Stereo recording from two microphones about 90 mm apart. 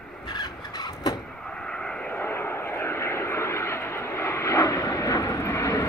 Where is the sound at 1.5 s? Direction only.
10° left (ahead or behind).